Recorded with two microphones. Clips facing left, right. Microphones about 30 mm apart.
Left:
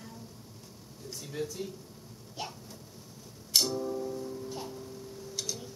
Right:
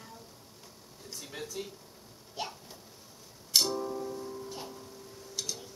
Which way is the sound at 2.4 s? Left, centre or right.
Centre.